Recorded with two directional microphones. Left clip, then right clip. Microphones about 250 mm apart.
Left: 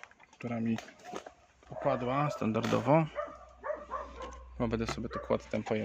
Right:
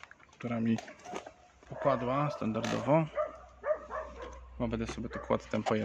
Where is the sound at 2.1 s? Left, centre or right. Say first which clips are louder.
Left 1 dB; centre.